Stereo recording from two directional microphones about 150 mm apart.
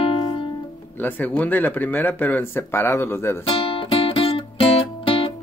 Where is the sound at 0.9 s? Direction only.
10° left (ahead or behind).